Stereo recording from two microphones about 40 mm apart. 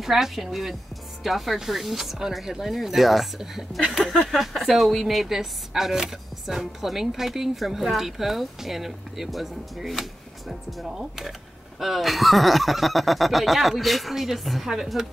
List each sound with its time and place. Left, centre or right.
0.0 s speech: centre